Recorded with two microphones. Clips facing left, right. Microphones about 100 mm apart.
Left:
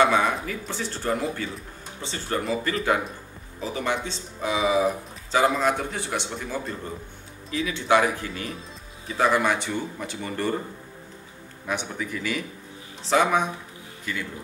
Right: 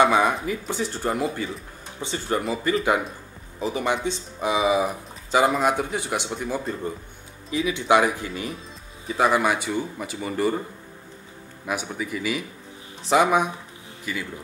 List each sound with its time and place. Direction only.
0.0 s speech: 15° right (ahead or behind)
11.6 s speech: 10° right (ahead or behind)